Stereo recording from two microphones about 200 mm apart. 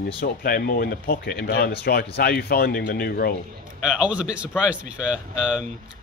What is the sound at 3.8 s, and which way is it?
Speech, 5° right (ahead or behind).